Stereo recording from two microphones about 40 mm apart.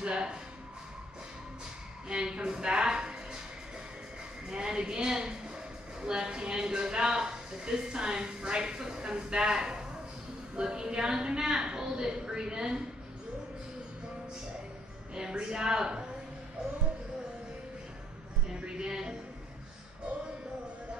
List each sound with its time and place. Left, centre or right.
0.0 s speech: right
2.0 s a woman's voice: right
4.5 s a woman's voice: centre
15.1 s speech: right
18.6 s speech: right